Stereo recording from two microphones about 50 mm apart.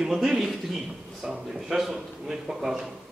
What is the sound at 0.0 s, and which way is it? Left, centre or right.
A man's voice, centre.